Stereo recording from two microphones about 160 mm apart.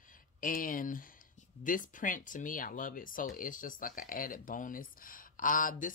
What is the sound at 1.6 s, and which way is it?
Speech, 55° left (ahead or behind).